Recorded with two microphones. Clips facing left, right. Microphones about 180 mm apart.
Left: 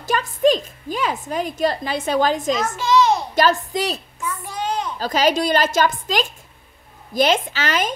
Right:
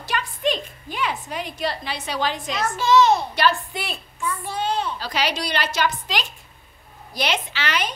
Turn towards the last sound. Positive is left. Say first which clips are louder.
# left 4 dB
turn(degrees=45)  # may be behind; listen again after turning